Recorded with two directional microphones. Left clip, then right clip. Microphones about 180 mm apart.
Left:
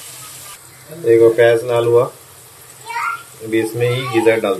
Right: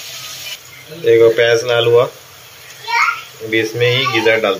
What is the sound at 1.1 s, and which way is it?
Speech, centre (ahead or behind).